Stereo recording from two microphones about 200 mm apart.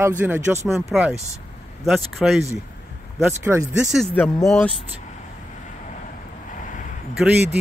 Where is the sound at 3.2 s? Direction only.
10° right (ahead or behind).